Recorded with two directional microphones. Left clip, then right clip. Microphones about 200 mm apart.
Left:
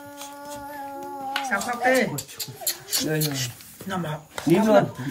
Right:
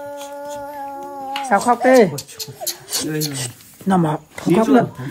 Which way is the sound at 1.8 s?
15° right (ahead or behind).